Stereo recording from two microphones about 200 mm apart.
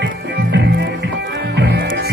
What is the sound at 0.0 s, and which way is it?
Music, 60° right (ahead or behind).